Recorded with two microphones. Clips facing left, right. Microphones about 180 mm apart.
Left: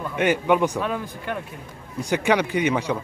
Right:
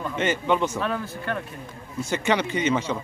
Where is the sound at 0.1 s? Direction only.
10° left (ahead or behind).